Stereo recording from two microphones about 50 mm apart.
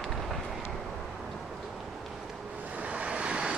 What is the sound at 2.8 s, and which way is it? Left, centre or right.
Vehicle, right.